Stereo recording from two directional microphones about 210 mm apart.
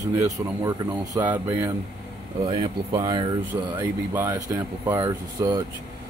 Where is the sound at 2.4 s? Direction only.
20° right (ahead or behind).